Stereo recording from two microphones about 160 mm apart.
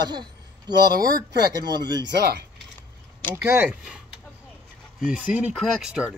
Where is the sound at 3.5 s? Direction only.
10° right (ahead or behind).